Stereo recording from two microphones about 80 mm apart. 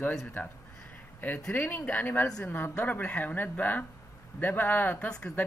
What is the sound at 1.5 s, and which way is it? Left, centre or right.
Speech, left.